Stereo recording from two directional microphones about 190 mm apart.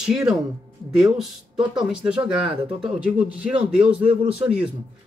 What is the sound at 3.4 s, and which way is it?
Speech, 5° right (ahead or behind).